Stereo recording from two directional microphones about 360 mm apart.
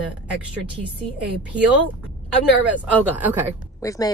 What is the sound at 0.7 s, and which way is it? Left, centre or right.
Speech, centre.